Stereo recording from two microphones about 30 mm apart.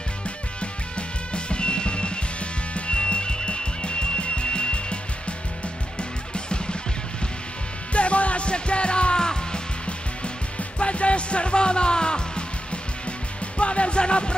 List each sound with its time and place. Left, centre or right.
0.6 s music: left
5.9 s music: left
7.9 s music: left
9.2 s music: left
9.8 s music: left
13.6 s music: left